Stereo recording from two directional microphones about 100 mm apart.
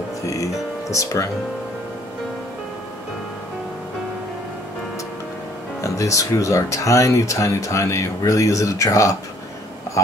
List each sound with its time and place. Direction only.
0.3 s music: 35° left (ahead or behind)
5.8 s speech: 35° left (ahead or behind)
10.0 s a sound: 30° left (ahead or behind)